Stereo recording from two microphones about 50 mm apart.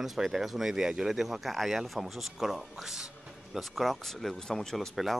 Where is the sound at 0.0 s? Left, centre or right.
Centre.